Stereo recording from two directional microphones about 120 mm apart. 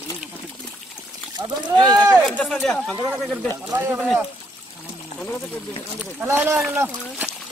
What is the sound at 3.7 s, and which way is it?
Speech, 20° right (ahead or behind).